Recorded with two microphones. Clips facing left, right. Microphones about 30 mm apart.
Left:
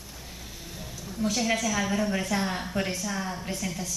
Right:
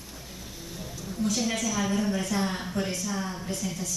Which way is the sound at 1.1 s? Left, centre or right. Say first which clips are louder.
Left 1 dB; left.